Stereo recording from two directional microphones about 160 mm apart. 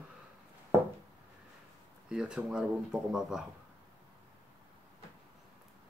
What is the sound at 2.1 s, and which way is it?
Speech, 5° right (ahead or behind).